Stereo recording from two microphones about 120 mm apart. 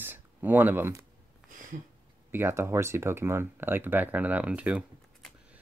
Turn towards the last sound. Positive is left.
turn(degrees=-10)  # may be behind; listen again after turning